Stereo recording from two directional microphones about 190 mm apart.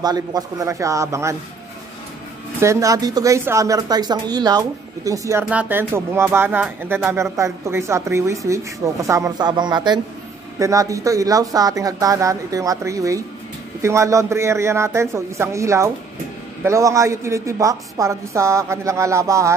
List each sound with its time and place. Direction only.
0.0 s speech: 20° right (ahead or behind)
2.6 s speech: 15° right (ahead or behind)
5.4 s speech: 5° right (ahead or behind)